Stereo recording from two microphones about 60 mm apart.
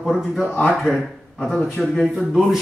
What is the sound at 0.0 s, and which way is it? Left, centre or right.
A man's voice, centre.